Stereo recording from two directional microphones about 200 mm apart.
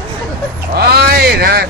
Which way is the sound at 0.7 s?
50° right (ahead or behind).